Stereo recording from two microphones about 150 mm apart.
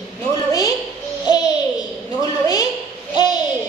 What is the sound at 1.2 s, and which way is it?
Babbling, 25° left (ahead or behind).